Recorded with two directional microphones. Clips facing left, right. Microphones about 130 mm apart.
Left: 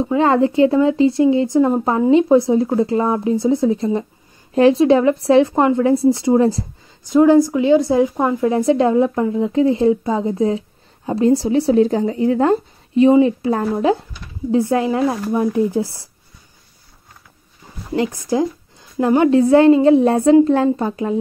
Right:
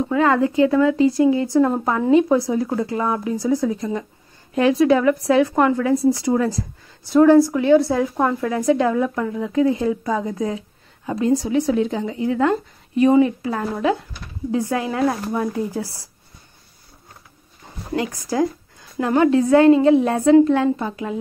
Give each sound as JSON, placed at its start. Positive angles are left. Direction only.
{"t": 0.0, "sound": "speech", "side_deg": 25}
{"t": 7.1, "sound": "a woman's voice", "side_deg": 15}
{"t": 8.5, "sound": "speech", "side_deg": 25}
{"t": 17.9, "sound": "speech", "side_deg": 25}